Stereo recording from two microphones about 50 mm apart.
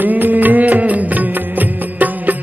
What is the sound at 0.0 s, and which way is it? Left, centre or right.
Music, right.